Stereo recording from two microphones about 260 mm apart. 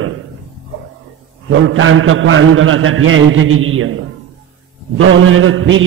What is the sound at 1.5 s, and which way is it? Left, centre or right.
A man's voice, right.